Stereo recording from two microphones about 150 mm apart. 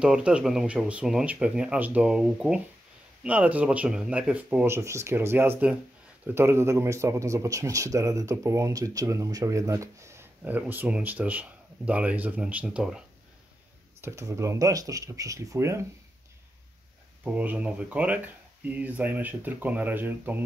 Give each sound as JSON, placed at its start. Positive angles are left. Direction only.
{"t": 0.0, "sound": "speech", "side_deg": -5}
{"t": 14.0, "sound": "speech", "side_deg": -20}
{"t": 17.2, "sound": "speech", "side_deg": -10}